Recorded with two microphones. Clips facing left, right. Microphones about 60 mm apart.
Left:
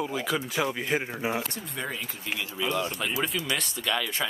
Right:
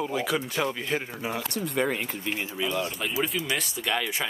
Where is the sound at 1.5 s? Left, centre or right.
Right.